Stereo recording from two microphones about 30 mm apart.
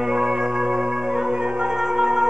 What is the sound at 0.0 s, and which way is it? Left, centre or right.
Music, centre.